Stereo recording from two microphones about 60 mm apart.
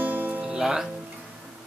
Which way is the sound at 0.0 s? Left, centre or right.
Right.